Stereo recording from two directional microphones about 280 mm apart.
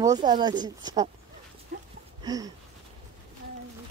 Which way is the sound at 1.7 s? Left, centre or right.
Right.